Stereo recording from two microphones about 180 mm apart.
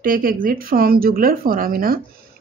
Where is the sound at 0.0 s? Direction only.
50° right (ahead or behind).